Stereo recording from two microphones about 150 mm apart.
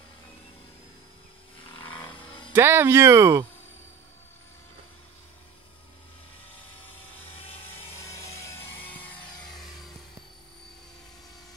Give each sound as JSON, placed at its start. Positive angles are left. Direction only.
{"t": 1.6, "sound": "vehicle", "side_deg": 35}
{"t": 2.5, "sound": "speech", "side_deg": -15}
{"t": 6.5, "sound": "helicopter", "side_deg": 10}